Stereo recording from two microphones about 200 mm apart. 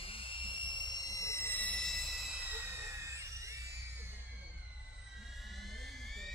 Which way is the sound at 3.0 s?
15° right (ahead or behind).